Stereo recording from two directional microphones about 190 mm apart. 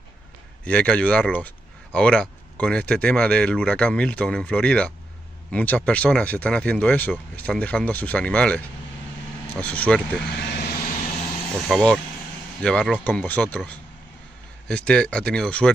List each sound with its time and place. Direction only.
0.7 s speech: 5° left (ahead or behind)
10.3 s vehicle: 60° left (ahead or behind)
11.7 s speech: 5° left (ahead or behind)
14.9 s speech: 5° left (ahead or behind)